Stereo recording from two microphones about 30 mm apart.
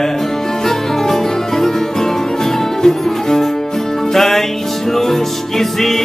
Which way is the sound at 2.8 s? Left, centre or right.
Centre.